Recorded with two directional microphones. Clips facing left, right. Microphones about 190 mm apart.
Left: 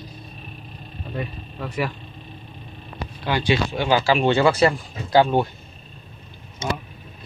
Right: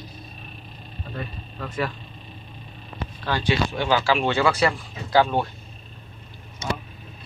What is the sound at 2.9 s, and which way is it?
Speech, 15° left (ahead or behind).